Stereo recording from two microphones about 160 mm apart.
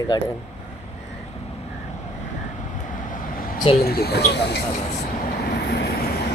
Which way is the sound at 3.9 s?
75° left (ahead or behind).